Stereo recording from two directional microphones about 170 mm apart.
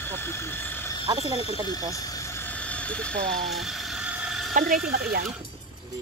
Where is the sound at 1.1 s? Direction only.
20° right (ahead or behind).